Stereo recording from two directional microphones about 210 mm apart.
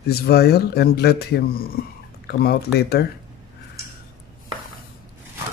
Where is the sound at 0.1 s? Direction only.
50° left (ahead or behind).